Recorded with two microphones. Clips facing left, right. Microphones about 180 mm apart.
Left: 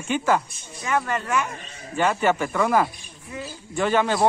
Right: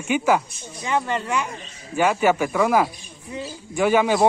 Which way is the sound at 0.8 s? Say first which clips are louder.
Right 1 dB; 25° right (ahead or behind).